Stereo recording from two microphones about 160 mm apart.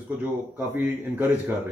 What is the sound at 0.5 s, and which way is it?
Speech, 10° right (ahead or behind).